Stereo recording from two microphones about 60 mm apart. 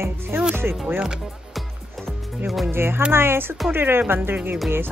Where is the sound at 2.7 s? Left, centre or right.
Right.